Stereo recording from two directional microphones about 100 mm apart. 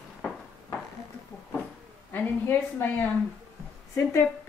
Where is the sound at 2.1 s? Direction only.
20° left (ahead or behind).